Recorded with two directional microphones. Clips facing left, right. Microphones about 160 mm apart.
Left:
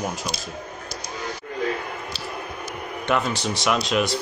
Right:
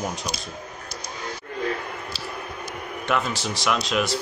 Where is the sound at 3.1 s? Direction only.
Centre (ahead or behind).